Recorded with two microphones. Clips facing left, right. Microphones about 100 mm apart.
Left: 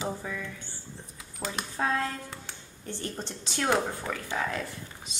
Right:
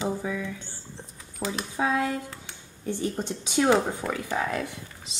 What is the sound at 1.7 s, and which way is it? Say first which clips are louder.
Speech: right 4 dB; 10° right (ahead or behind).